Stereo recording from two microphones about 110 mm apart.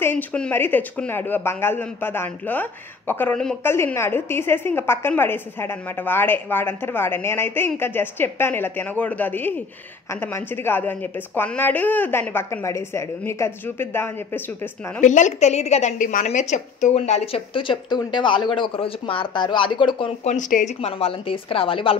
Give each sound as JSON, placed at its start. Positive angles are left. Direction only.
{"t": 0.0, "sound": "a woman's voice", "side_deg": 15}
{"t": 15.1, "sound": "a woman's voice", "side_deg": 90}
{"t": 20.2, "sound": "speech", "side_deg": 80}